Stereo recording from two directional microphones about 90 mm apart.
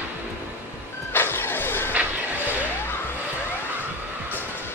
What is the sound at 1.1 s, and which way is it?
Vehicle, 25° left (ahead or behind).